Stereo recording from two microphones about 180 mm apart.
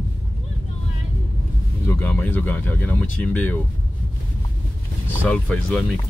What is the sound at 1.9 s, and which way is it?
Speech, 10° left (ahead or behind).